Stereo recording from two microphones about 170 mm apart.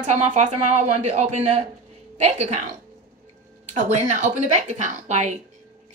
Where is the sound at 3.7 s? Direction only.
45° right (ahead or behind).